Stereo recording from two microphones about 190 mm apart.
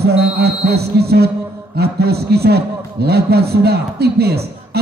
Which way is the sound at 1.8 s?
55° right (ahead or behind).